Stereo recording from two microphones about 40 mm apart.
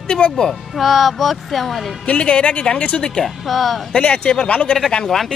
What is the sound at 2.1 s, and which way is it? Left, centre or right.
Speech, left.